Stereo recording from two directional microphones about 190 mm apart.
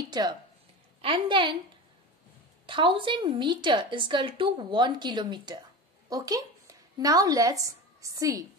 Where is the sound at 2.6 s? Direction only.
25° right (ahead or behind).